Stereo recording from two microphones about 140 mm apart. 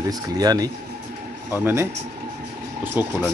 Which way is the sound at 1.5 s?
15° right (ahead or behind).